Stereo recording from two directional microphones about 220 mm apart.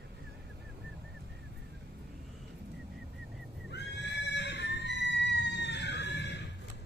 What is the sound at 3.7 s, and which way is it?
Neigh, 50° left (ahead or behind).